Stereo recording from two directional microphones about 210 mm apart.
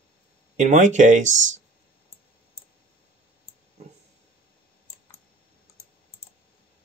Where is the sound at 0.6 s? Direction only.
35° right (ahead or behind).